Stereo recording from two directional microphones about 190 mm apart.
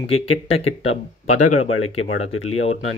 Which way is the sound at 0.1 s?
30° left (ahead or behind).